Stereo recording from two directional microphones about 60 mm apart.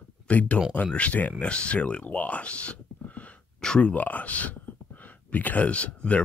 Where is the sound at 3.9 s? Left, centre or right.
Left.